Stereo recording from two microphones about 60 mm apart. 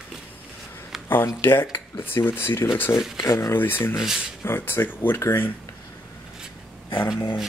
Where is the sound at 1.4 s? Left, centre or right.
Left.